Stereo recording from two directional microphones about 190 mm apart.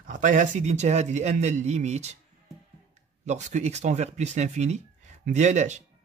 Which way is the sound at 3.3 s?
40° right (ahead or behind).